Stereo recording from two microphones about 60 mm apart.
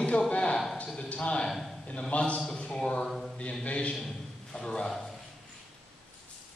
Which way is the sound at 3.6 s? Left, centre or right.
Left.